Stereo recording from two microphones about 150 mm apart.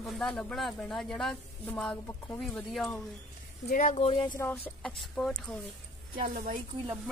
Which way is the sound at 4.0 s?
40° left (ahead or behind).